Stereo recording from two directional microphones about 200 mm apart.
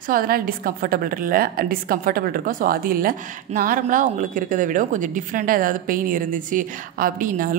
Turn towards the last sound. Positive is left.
turn(degrees=-45)  # may be behind; listen again after turning